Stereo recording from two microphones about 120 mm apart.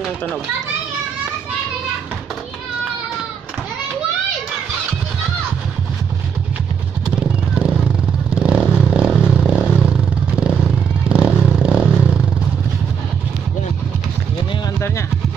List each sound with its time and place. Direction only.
7.1 s vehicle: 10° right (ahead or behind)